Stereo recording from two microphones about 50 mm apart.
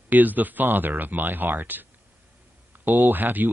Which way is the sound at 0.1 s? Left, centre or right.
Right.